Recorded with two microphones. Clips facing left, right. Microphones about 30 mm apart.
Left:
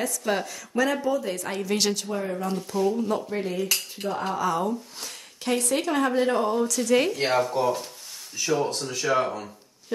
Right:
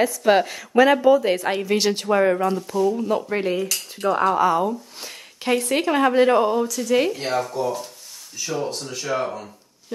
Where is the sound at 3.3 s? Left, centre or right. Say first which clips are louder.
Right 4 dB; right.